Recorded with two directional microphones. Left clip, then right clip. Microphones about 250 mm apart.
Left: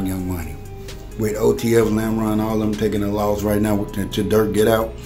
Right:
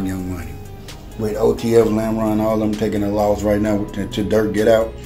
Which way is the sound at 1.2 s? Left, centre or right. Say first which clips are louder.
Right 1 dB; left.